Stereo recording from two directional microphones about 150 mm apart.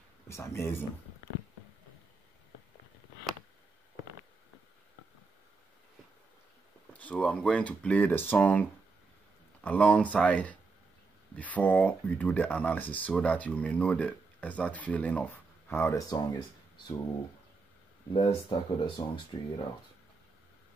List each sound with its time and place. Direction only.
0.3 s speech: 20° left (ahead or behind)
6.9 s speech: 10° left (ahead or behind); by 17.0 s 25° left (ahead or behind)
18.2 s speech: 30° left (ahead or behind)